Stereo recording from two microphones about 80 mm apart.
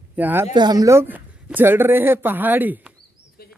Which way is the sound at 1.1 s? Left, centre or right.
Right.